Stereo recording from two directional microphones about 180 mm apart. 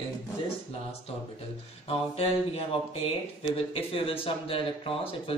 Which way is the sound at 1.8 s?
35° left (ahead or behind).